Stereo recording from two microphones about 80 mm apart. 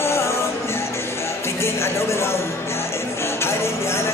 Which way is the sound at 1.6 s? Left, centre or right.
Left.